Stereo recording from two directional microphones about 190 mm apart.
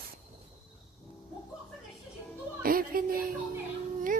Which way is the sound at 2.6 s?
50° right (ahead or behind).